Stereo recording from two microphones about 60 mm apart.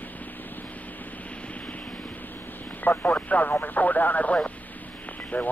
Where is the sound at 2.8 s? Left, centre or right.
Left.